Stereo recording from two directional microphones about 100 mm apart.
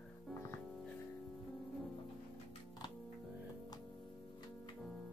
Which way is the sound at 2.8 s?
45° left (ahead or behind).